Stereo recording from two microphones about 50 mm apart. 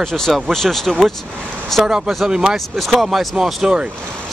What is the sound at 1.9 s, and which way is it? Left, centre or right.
Speech, centre.